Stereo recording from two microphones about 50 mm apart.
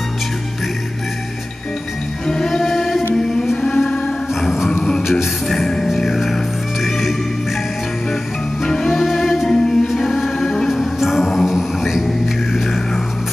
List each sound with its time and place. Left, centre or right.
2.2 s music: centre
3.2 s chant: centre
4.4 s music: centre
4.6 s a sound: centre
5.2 s music: centre
8.8 s music: centre
9.5 s a capella: centre
9.8 s music: centre
10.7 s music: centre